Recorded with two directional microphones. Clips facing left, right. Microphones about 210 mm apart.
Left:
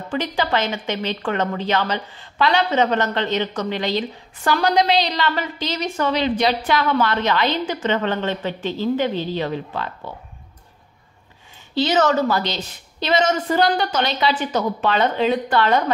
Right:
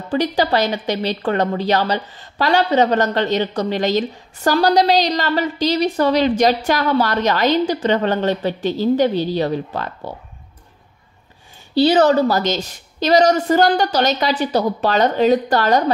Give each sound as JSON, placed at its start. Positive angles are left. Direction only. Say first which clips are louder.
{"t": 0.1, "sound": "a woman's voice", "louder": "right 5 dB", "side_deg": -40}
{"t": 11.7, "sound": "a woman's voice", "louder": "right 5 dB", "side_deg": -35}